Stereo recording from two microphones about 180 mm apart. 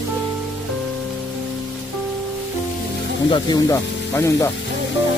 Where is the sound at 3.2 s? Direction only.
25° left (ahead or behind).